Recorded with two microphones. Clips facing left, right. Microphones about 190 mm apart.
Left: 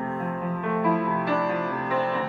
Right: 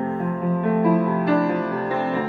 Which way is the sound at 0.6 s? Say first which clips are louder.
Right 6 dB; 40° right (ahead or behind).